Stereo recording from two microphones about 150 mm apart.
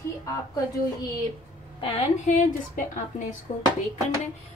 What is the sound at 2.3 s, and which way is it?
A woman's voice, 60° left (ahead or behind).